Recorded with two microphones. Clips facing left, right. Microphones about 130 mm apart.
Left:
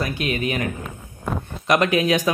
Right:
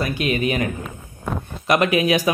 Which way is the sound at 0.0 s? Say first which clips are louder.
Right 3 dB; 10° right (ahead or behind).